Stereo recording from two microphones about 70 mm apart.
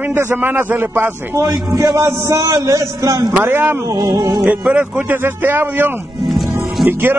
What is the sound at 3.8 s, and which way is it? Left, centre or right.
Music, right.